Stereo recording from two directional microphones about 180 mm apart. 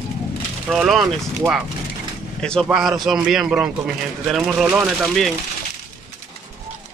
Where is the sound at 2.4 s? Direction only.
Centre (ahead or behind).